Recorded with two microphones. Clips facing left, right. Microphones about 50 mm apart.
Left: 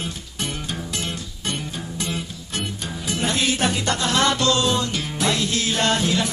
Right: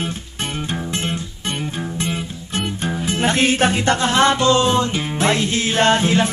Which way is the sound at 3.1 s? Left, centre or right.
Right.